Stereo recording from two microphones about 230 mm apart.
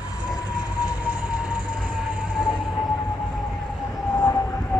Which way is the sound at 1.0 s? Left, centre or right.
Centre.